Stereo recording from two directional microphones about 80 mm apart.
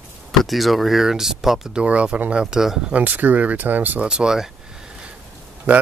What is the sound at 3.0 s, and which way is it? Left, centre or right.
Speech, right.